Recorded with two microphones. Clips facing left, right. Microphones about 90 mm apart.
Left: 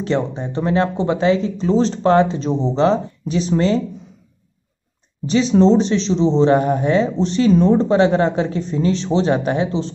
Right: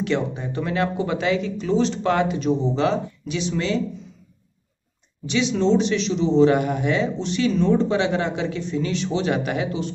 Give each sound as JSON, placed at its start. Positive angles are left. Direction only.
{"t": 0.0, "sound": "speech", "side_deg": 30}
{"t": 5.2, "sound": "speech", "side_deg": 35}